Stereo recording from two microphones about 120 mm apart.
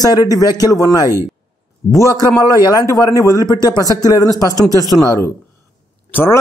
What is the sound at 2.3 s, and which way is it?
A man's voice, 30° left (ahead or behind).